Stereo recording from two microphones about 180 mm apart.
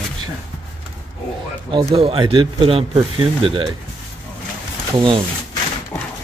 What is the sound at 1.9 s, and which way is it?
Speech, 30° right (ahead or behind).